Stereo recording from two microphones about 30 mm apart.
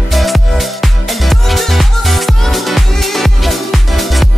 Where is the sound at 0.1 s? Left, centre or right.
Centre.